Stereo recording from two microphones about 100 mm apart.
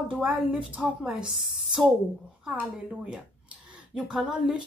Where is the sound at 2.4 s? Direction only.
15° right (ahead or behind).